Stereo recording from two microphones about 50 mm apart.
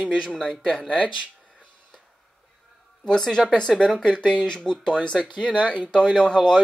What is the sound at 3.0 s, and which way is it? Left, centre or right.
Speech, centre.